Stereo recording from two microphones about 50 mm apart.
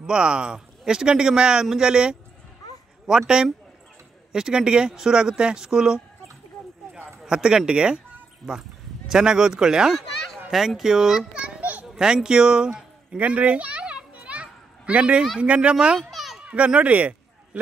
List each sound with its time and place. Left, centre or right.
0.0 s speech: centre
7.2 s a child's voice: centre
13.2 s children playing: right
15.4 s a child's voice: right
16.0 s children playing: centre
16.4 s a child's voice: right